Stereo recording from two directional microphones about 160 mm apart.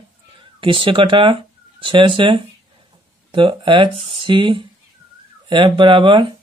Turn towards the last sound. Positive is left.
turn(degrees=-30)  # may be behind; listen again after turning